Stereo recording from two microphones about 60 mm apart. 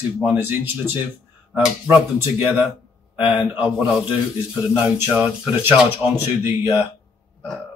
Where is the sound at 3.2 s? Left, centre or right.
Right.